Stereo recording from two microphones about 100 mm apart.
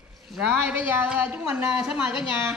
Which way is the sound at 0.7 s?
20° right (ahead or behind).